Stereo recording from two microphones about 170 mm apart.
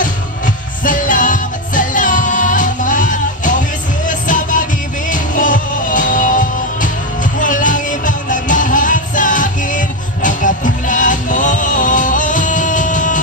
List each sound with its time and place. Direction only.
0.8 s music: 50° left (ahead or behind)